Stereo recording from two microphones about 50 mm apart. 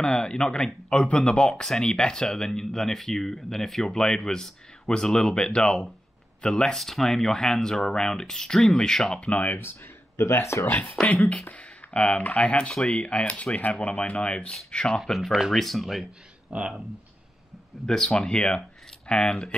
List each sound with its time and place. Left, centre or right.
0.0 s speech: centre
9.2 s speech: left
9.6 s speech: left
11.5 s speech: left
15.5 s speech: centre
16.4 s speech: right
17.8 s speech: centre